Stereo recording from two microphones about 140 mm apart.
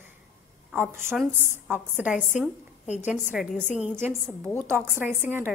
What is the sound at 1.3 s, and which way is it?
Speech, 60° left (ahead or behind).